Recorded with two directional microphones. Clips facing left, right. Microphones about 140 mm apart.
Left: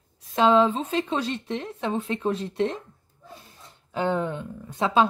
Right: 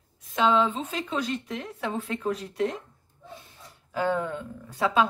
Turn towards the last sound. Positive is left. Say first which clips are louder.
# left 2 dB
turn(degrees=25)  # may be behind; listen again after turning